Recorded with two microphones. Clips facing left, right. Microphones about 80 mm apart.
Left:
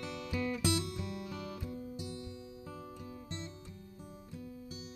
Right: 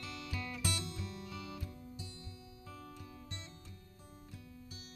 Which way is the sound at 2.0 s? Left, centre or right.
Centre.